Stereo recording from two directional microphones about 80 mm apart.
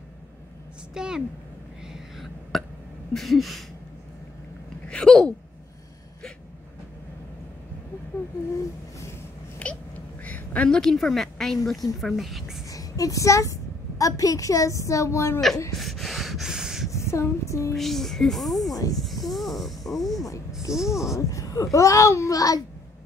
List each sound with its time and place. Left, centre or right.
0.9 s speech: centre
1.9 s a sound: centre
3.1 s speech: centre
4.8 s a sound: centre
9.6 s a sound: centre
10.8 s speech: centre
12.6 s a woman's voice: left
15.7 s snort: centre
16.9 s female singing: left
17.7 s speech: centre
18.9 s a sound: centre
20.1 s speech: left
20.7 s speech: centre
21.1 s a child's voice: left